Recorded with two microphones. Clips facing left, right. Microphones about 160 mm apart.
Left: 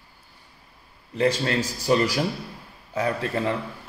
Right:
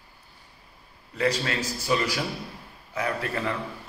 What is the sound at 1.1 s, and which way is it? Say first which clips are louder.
A man's voice: left 4 dB; 30° left (ahead or behind).